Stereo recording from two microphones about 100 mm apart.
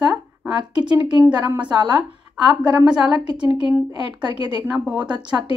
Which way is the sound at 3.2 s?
50° right (ahead or behind).